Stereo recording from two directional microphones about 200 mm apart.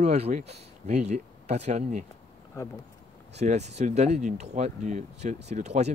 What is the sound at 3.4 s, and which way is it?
Speech, 35° right (ahead or behind).